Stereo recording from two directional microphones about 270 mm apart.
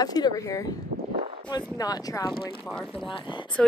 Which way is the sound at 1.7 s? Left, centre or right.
Centre.